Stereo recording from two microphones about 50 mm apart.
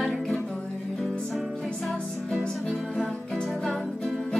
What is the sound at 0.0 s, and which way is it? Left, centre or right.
Music, centre.